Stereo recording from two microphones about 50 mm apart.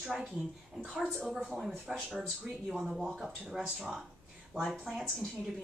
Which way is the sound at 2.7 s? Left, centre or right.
Centre.